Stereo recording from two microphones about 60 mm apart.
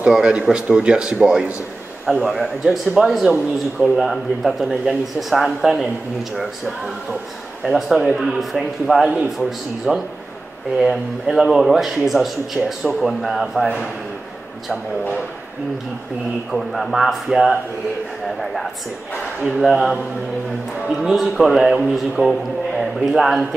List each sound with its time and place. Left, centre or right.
0.1 s speech: centre
2.0 s a man's voice: centre
7.6 s a man's voice: centre
9.9 s a man's voice: centre
16.5 s a man's voice: centre
21.0 s a man's voice: centre